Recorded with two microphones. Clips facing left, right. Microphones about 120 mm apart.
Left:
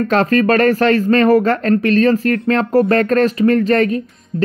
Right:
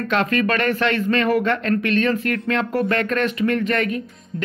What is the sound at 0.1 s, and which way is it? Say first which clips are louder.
Speech: left 6 dB; 35° left (ahead or behind).